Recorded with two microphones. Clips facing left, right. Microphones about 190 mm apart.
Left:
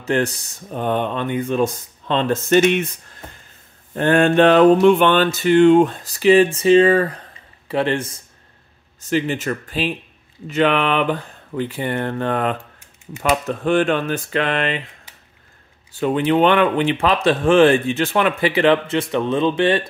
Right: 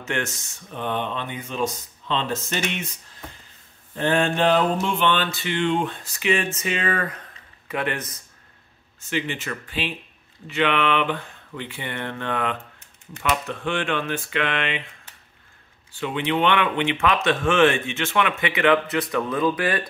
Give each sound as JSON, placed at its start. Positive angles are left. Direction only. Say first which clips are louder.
{"t": 0.0, "sound": "speech", "louder": "left 8 dB", "side_deg": 35}
{"t": 3.9, "sound": "a sound", "louder": "left 7 dB", "side_deg": 55}
{"t": 4.8, "sound": "speech", "louder": "left 10 dB", "side_deg": 55}
{"t": 9.0, "sound": "speech", "louder": "left 7 dB", "side_deg": 40}
{"t": 15.9, "sound": "speech", "louder": "left 7 dB", "side_deg": 40}